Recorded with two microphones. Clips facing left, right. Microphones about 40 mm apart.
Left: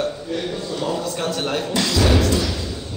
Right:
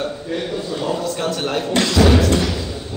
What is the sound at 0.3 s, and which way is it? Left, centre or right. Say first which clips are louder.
A man's voice: right 2 dB; centre.